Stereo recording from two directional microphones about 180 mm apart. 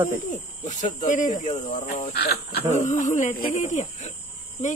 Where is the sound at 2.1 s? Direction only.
60° left (ahead or behind).